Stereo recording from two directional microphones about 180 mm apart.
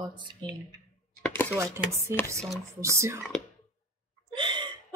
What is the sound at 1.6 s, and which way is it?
Speech, 15° right (ahead or behind).